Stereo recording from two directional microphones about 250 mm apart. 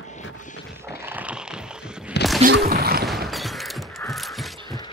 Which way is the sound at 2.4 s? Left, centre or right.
Right.